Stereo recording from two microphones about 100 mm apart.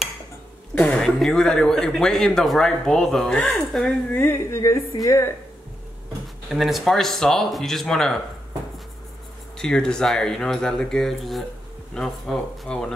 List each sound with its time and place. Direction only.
0.7 s speech: 10° left (ahead or behind)
4.1 s speech: 25° left (ahead or behind)
6.5 s speech: centre (ahead or behind)
9.6 s speech: 5° left (ahead or behind)